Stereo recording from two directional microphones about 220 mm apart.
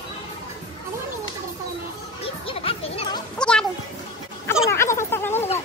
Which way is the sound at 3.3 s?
5° left (ahead or behind).